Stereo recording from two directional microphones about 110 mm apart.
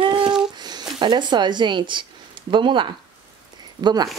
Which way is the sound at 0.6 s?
40° right (ahead or behind).